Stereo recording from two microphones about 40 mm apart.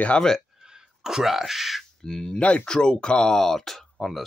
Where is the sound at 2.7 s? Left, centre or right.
Left.